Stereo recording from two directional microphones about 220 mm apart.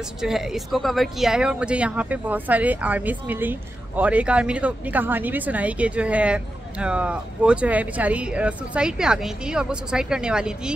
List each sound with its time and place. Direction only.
0.2 s speech: centre (ahead or behind)